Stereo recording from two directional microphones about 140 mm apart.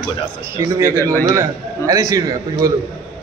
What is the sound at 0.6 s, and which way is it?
A man's voice, 20° right (ahead or behind).